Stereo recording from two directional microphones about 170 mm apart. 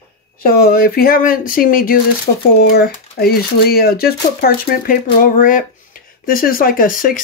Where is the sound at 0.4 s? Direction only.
65° left (ahead or behind).